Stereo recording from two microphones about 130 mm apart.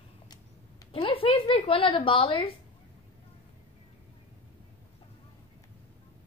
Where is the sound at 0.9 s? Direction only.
45° left (ahead or behind).